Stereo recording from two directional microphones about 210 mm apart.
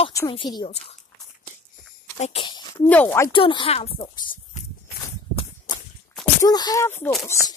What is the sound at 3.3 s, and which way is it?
Speech, 25° left (ahead or behind).